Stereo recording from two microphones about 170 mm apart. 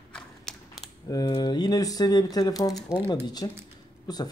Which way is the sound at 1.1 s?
25° left (ahead or behind).